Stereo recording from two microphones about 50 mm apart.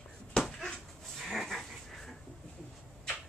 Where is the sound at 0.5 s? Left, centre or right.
Centre.